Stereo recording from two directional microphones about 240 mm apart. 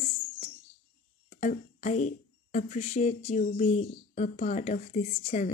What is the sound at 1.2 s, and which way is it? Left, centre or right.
Speech, left.